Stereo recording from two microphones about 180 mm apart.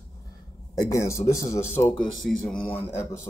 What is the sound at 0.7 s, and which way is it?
Speech, 15° left (ahead or behind).